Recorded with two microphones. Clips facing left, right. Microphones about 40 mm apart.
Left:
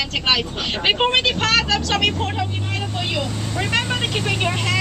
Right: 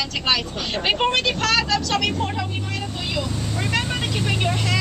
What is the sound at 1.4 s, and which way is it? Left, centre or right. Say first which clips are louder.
Speech: left 2 dB; left.